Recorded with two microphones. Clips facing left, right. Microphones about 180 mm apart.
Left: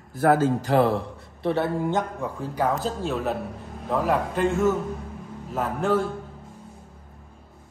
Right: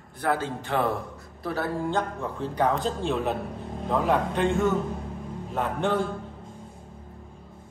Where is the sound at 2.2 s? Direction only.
5° left (ahead or behind).